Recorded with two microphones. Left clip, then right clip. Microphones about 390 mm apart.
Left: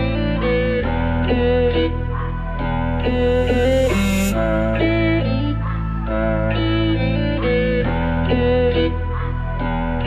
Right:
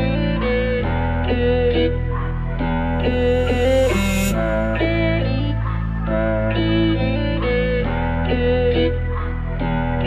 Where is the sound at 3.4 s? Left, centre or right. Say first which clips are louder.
Even; right.